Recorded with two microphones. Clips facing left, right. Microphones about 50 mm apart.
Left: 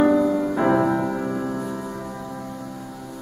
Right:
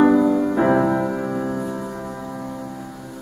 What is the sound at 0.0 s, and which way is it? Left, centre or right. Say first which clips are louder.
Music: right 3 dB; centre.